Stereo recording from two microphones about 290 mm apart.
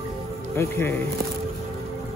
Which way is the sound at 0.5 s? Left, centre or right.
Centre.